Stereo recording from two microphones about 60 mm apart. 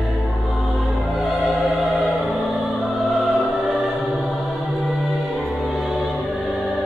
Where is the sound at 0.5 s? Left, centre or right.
Centre.